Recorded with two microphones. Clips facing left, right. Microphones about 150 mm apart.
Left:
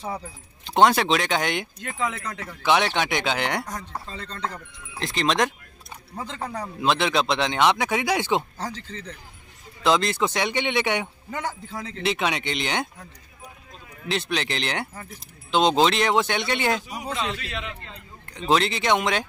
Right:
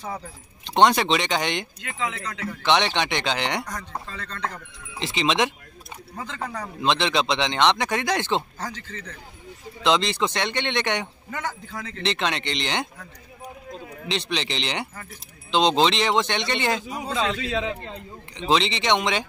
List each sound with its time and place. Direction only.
0.7 s speech: 5° left (ahead or behind)
1.8 s speech: 50° left (ahead or behind)
2.6 s speech: 5° left (ahead or behind)
4.1 s speech: 25° left (ahead or behind)
4.5 s speech: centre (ahead or behind)
6.1 s speech: 30° left (ahead or behind)
6.6 s speech: 5° left (ahead or behind)
8.5 s speech: 30° left (ahead or behind)
9.8 s speech: centre (ahead or behind)
11.2 s speech: 25° left (ahead or behind)
12.0 s speech: 5° left (ahead or behind)
14.0 s speech: 5° left (ahead or behind)
17.1 s a man's voice: 90° right
18.2 s speech: centre (ahead or behind)